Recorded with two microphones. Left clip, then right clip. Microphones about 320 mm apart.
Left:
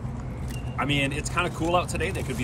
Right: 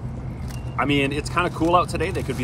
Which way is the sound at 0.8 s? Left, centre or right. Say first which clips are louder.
Right 5 dB; centre.